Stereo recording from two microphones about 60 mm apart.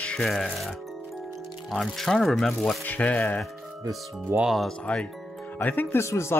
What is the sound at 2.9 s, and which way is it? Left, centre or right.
Speech, left.